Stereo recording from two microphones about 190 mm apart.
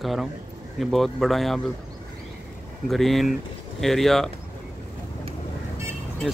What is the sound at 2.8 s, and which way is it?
Speech, centre (ahead or behind).